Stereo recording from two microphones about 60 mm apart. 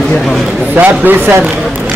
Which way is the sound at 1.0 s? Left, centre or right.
Right.